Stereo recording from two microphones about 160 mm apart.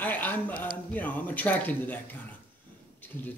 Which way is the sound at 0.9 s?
10° left (ahead or behind).